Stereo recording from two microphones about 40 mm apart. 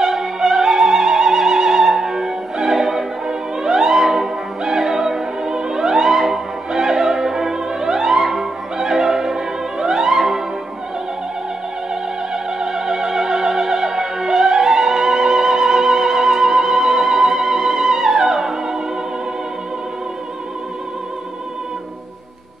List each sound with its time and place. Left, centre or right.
0.0 s opera: centre
12.4 s music: centre